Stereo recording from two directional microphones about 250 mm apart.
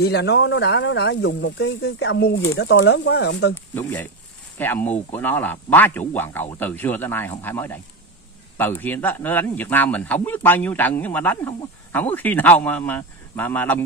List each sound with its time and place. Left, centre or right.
0.0 s speech: left
3.5 s a man's voice: centre